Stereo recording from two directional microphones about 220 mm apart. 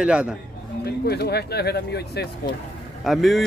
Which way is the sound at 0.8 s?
45° left (ahead or behind).